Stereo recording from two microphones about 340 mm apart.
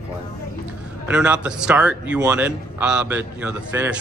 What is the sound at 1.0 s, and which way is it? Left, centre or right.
A man's voice, centre.